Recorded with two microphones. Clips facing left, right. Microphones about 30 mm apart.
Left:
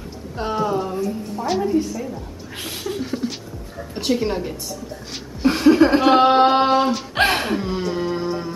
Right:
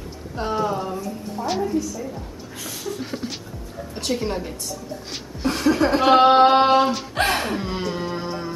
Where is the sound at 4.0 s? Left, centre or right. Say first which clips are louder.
Left 4 dB; centre.